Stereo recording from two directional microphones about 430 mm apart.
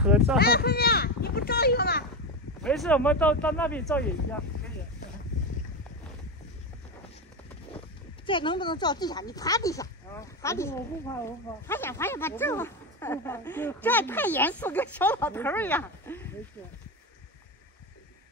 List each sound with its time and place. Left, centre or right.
0.0 s speech: centre
0.4 s speech: left
2.6 s speech: centre
8.3 s speech: centre